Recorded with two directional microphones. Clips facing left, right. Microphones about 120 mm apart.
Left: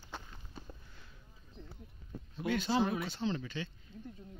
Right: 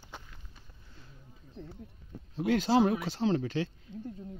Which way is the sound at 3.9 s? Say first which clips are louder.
Right 8 dB; 70° right (ahead or behind).